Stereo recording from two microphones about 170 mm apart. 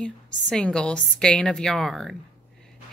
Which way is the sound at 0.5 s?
5° left (ahead or behind).